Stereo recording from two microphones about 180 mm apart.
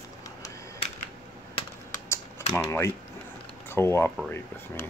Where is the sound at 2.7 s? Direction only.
15° left (ahead or behind).